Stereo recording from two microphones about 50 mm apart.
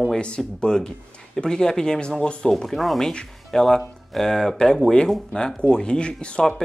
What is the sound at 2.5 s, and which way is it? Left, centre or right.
Speech, centre.